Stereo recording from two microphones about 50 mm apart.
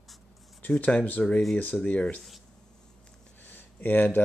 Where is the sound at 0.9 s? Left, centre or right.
Left.